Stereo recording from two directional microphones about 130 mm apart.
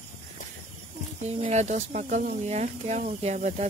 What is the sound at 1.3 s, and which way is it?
Speech, 60° right (ahead or behind).